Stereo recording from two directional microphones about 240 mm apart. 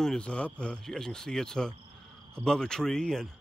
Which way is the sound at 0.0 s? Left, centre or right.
Centre.